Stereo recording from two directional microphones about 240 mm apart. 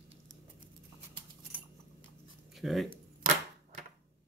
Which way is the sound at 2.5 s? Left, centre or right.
Centre.